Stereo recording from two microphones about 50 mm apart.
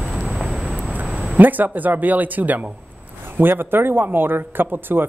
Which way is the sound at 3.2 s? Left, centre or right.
Right.